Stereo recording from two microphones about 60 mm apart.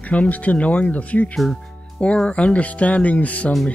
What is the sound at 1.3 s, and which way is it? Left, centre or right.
Speech, centre.